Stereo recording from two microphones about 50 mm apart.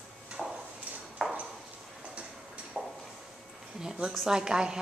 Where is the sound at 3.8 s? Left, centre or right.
Centre.